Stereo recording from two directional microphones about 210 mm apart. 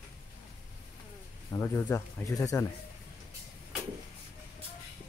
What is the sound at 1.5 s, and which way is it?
Speech, 15° left (ahead or behind).